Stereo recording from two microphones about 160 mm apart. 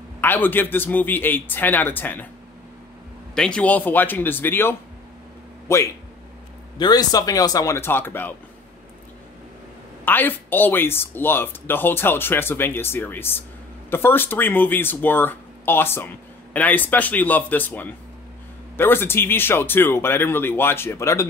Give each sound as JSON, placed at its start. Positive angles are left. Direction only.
{"t": 0.2, "sound": "speech", "side_deg": 10}
{"t": 3.3, "sound": "speech", "side_deg": 5}
{"t": 10.0, "sound": "speech", "side_deg": 10}